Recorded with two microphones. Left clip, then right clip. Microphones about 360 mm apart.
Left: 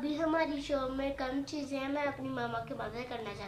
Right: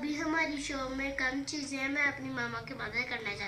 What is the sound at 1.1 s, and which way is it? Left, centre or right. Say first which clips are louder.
Speech: right 3 dB; centre.